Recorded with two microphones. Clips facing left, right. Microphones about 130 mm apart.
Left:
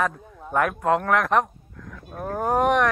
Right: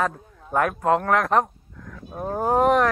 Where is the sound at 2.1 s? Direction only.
20° right (ahead or behind).